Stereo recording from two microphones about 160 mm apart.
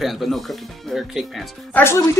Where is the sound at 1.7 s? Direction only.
15° left (ahead or behind).